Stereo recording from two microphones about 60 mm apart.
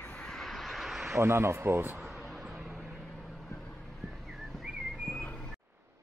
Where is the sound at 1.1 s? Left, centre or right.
Right.